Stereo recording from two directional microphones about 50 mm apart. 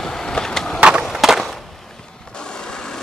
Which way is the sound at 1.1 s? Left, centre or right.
Centre.